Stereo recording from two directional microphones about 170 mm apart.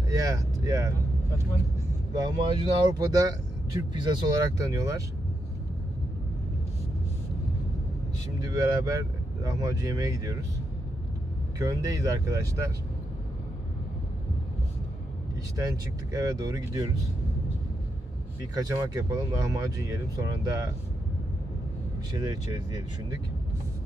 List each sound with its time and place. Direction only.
0.1 s speech: 20° right (ahead or behind)
2.1 s speech: 25° right (ahead or behind)
8.4 s speech: 20° right (ahead or behind)
11.5 s speech: 20° right (ahead or behind)
15.5 s speech: 20° right (ahead or behind)
18.4 s speech: 20° right (ahead or behind)
22.1 s speech: 20° right (ahead or behind)